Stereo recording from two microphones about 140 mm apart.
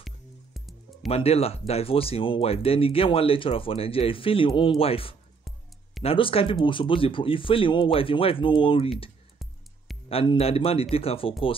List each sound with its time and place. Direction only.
1.0 s speech: 45° left (ahead or behind)
10.0 s speech: 45° left (ahead or behind)